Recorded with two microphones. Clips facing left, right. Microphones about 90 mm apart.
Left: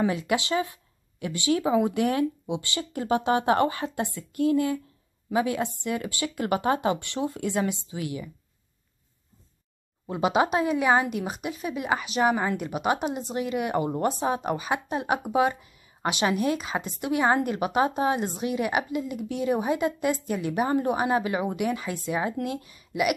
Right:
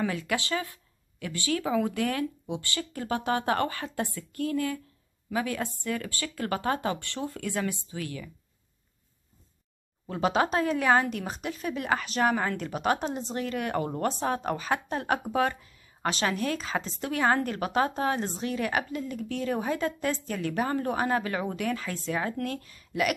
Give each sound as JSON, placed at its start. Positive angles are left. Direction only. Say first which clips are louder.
{"t": 0.0, "sound": "speech", "louder": "left 4 dB", "side_deg": 20}
{"t": 10.0, "sound": "speech", "louder": "left 2 dB", "side_deg": 10}